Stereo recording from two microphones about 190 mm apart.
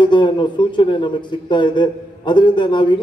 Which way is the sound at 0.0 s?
25° left (ahead or behind).